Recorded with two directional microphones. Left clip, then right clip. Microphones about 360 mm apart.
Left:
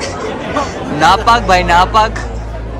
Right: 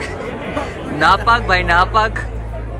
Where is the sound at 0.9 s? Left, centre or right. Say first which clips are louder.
Left 4 dB; centre.